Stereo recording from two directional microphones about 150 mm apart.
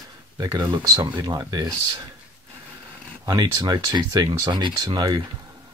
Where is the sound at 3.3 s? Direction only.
25° right (ahead or behind).